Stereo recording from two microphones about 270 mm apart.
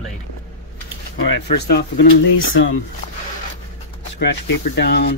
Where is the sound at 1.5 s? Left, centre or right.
Left.